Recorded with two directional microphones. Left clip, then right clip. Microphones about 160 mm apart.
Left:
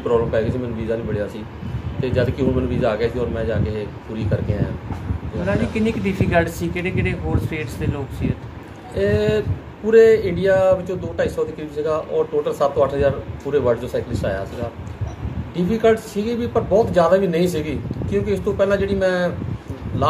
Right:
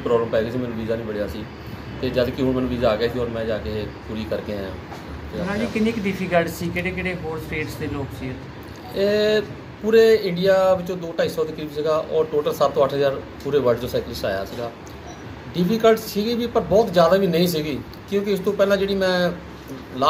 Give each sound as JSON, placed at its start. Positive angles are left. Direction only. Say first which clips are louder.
{"t": 0.0, "sound": "a man's voice", "louder": "left 1 dB", "side_deg": 10}
{"t": 5.5, "sound": "speech", "louder": "left 3 dB", "side_deg": 60}
{"t": 8.9, "sound": "a man's voice", "louder": "even", "side_deg": 5}